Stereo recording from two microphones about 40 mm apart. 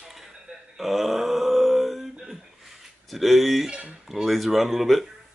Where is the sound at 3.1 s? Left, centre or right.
Centre.